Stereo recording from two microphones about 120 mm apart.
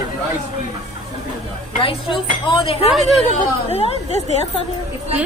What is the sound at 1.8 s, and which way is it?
A woman's voice, 45° left (ahead or behind).